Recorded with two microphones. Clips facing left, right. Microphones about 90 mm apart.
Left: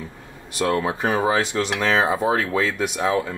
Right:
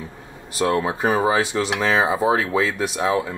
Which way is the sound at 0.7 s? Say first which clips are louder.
Right 2 dB; 10° right (ahead or behind).